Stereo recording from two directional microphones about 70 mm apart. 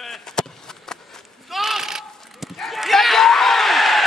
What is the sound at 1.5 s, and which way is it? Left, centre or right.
Goat, centre.